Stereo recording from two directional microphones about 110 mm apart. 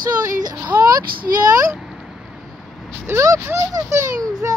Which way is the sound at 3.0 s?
25° right (ahead or behind).